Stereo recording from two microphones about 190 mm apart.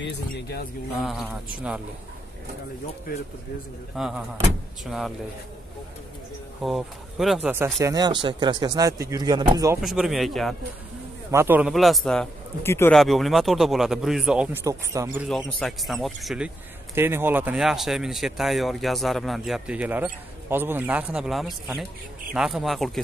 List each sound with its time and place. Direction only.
0.0 s speech: 60° left (ahead or behind)
0.9 s speech: centre (ahead or behind)
3.9 s speech: centre (ahead or behind)
6.6 s speech: centre (ahead or behind)
7.8 s speech: 20° right (ahead or behind)
9.8 s speech: centre (ahead or behind)
11.3 s speech: 10° right (ahead or behind); by 12.9 s 10° left (ahead or behind)
12.9 s speech: centre (ahead or behind); by 15.2 s 15° right (ahead or behind)
15.2 s speech: centre (ahead or behind)